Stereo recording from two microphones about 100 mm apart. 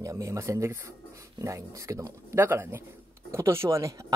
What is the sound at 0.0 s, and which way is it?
Speech, 30° right (ahead or behind).